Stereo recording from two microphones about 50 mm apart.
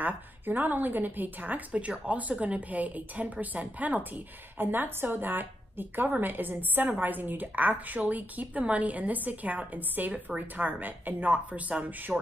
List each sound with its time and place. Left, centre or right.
0.0 s a woman's voice: right
1.7 s a woman's voice: right
11.3 s a woman's voice: right